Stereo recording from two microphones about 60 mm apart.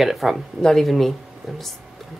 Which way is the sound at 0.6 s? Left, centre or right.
Centre.